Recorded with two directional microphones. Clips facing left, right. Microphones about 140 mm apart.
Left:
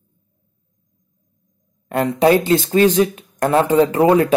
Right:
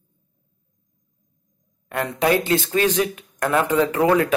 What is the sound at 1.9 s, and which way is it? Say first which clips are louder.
Speech: left 6 dB; 30° left (ahead or behind).